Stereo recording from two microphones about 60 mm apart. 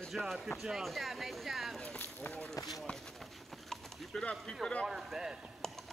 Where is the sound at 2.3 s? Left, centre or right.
Centre.